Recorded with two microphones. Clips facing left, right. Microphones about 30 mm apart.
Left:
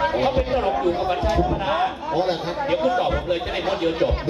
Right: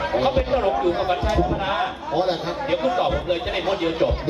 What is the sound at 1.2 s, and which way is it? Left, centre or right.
A man's voice, centre.